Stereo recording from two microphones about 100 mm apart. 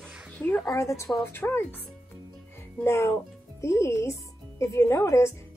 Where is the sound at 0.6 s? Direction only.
30° left (ahead or behind).